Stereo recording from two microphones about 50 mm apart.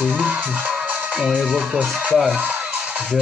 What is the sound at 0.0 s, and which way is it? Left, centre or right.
Music, right.